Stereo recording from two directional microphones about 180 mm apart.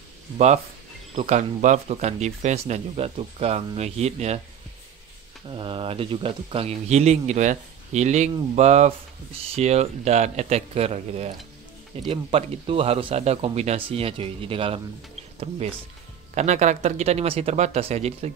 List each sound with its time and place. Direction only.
1.2 s speech: 40° right (ahead or behind)
5.5 s speech: 30° right (ahead or behind)
16.3 s speech: 40° right (ahead or behind)